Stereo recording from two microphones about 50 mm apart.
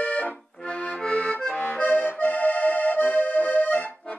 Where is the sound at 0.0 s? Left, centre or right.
Left.